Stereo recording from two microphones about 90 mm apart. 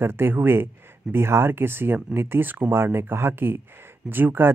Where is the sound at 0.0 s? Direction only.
25° right (ahead or behind).